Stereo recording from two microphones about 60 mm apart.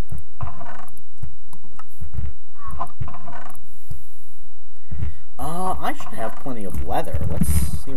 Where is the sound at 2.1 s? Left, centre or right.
Centre.